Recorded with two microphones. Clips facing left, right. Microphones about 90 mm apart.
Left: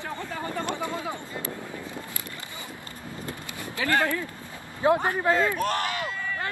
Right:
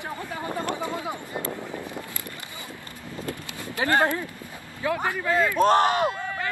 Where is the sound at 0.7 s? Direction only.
20° right (ahead or behind).